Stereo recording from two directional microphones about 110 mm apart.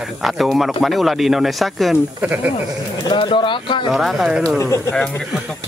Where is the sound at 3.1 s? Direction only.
50° left (ahead or behind).